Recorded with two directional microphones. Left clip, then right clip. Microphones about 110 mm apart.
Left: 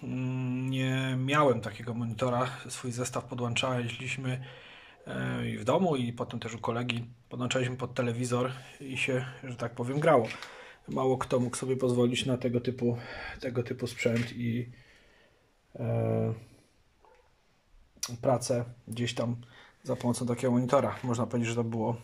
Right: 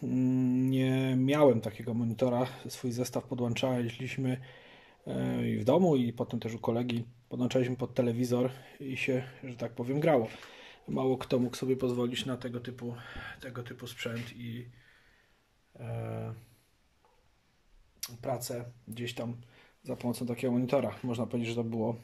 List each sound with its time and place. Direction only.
0.0 s a sound: 70° right (ahead or behind)
2.2 s speech: 55° right (ahead or behind); by 11.8 s 30° right (ahead or behind)
11.8 s speech: 15° right (ahead or behind)
12.1 s speech: 5° left (ahead or behind)
12.4 s speech: 25° left (ahead or behind)
12.7 s speech: 40° left (ahead or behind)
15.8 s a sound: 45° left (ahead or behind)
18.0 s speech: 25° left (ahead or behind); by 21.9 s 30° right (ahead or behind)